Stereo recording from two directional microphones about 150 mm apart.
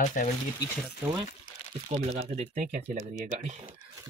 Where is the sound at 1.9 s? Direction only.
45° right (ahead or behind).